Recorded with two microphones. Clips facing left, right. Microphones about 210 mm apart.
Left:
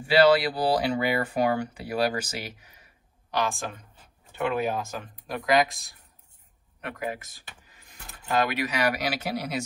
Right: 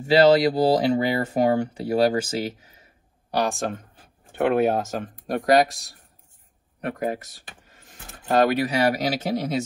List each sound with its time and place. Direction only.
0.1 s speech: 20° right (ahead or behind)
3.3 s speech: 45° right (ahead or behind)
6.9 s speech: 45° right (ahead or behind); by 9.5 s 25° right (ahead or behind)